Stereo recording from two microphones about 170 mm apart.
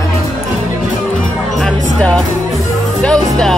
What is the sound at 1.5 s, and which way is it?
Music, centre (ahead or behind).